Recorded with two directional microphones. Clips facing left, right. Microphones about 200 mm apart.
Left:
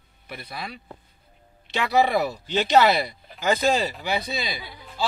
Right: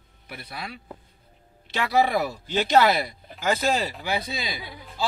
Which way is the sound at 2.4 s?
10° right (ahead or behind).